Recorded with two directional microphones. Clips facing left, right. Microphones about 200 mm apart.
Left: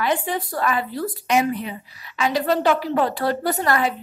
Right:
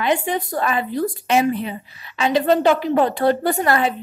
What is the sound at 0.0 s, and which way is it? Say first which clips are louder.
A woman's voice: right 3 dB; 20° right (ahead or behind).